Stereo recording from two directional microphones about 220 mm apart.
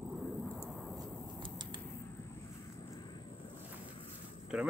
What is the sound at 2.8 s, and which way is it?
Boat, 20° left (ahead or behind).